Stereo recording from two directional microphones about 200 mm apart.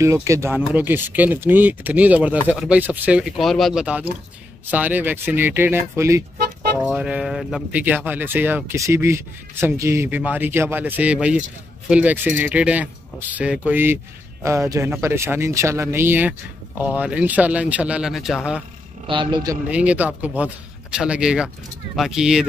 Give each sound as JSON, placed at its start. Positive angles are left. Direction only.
{"t": 0.0, "sound": "speech", "side_deg": -15}
{"t": 19.0, "sound": "speech", "side_deg": -25}
{"t": 19.7, "sound": "speech", "side_deg": -5}